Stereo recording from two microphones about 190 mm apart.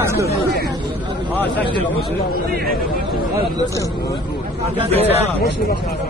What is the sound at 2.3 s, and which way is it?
Speech, 50° right (ahead or behind).